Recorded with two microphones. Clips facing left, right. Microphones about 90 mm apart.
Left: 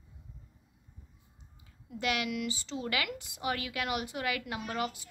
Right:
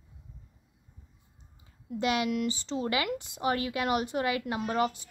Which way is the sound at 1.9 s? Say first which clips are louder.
Right 5 dB; 30° right (ahead or behind).